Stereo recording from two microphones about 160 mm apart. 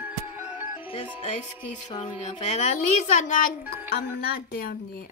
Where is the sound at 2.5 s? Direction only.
50° left (ahead or behind).